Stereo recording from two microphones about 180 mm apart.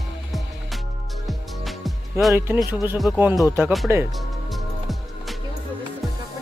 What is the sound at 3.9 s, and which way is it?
Speech, 15° right (ahead or behind).